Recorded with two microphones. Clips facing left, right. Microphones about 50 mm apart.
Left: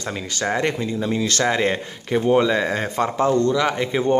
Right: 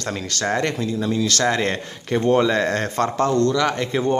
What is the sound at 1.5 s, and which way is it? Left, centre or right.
Speech, centre.